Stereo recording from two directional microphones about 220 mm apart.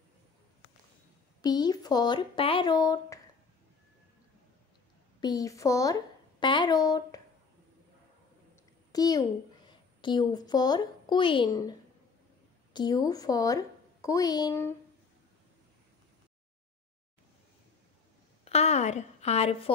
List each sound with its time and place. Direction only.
1.4 s speech: 20° left (ahead or behind)
5.2 s a woman's voice: 15° left (ahead or behind)
8.9 s a child's voice: 15° left (ahead or behind)
12.7 s a woman's voice: 20° left (ahead or behind)
18.4 s a woman's voice: 30° left (ahead or behind)